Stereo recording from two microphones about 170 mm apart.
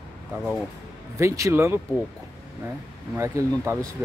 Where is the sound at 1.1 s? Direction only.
20° right (ahead or behind).